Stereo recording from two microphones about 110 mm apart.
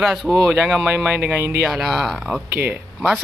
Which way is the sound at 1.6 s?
Centre (ahead or behind).